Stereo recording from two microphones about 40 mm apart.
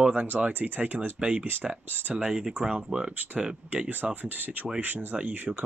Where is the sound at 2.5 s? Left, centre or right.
Right.